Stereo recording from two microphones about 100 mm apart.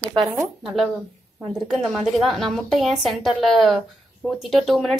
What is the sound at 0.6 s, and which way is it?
Speech, 5° right (ahead or behind).